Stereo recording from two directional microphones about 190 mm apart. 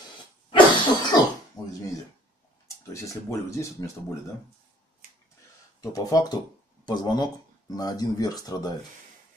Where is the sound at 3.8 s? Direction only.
20° left (ahead or behind).